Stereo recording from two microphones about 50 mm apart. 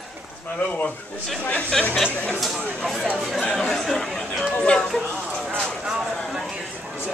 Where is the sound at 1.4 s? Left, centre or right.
Left.